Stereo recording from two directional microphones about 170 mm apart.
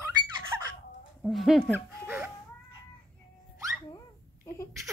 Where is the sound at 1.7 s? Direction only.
15° right (ahead or behind).